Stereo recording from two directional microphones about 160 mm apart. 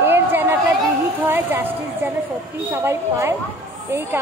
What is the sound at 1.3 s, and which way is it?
A woman's voice, 15° right (ahead or behind).